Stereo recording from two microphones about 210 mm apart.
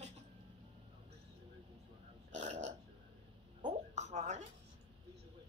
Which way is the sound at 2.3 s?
35° right (ahead or behind).